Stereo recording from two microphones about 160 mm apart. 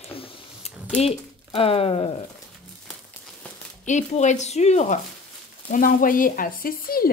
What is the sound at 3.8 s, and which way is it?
A woman's voice, 50° left (ahead or behind).